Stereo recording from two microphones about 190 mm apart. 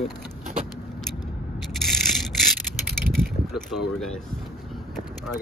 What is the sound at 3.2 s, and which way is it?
Speech, centre (ahead or behind).